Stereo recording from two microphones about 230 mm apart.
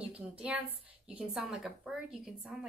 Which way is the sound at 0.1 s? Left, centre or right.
Centre.